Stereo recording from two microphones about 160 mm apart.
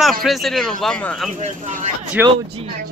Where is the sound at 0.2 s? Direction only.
Centre (ahead or behind).